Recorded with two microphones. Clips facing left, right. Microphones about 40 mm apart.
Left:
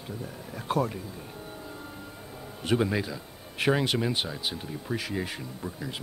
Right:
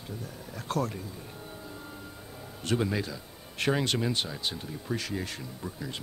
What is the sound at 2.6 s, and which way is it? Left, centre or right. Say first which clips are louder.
Speech: left 3 dB; centre.